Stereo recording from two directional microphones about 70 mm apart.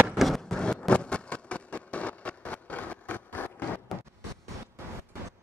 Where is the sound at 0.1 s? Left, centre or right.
Centre.